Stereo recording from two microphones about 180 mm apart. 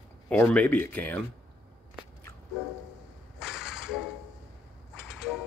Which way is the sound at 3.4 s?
5° right (ahead or behind).